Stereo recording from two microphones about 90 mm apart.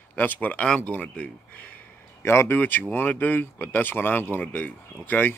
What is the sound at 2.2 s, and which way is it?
Speech, 30° left (ahead or behind).